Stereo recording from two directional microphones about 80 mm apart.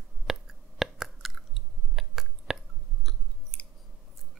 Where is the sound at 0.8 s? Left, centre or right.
Centre.